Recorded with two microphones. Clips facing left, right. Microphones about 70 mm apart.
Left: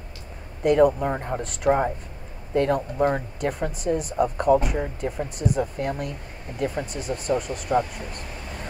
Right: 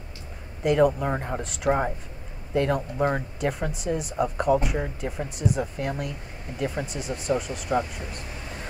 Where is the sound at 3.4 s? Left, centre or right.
Left.